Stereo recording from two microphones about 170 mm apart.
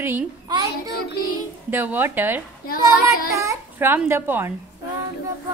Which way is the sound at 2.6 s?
60° left (ahead or behind).